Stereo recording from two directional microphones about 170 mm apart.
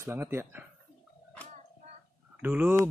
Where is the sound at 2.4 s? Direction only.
10° right (ahead or behind).